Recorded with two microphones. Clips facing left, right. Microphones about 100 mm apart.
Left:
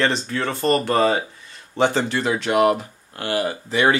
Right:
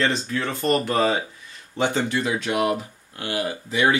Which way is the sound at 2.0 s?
65° left (ahead or behind).